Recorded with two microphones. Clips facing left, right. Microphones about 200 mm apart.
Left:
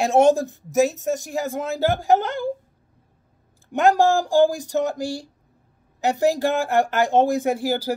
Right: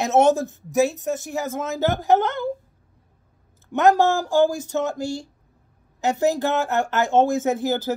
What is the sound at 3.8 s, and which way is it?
Speech, 15° left (ahead or behind).